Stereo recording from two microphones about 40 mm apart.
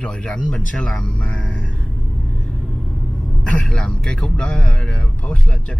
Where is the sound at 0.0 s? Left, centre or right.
Left.